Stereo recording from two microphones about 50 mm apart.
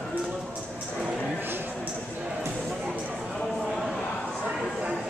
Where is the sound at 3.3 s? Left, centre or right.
Centre.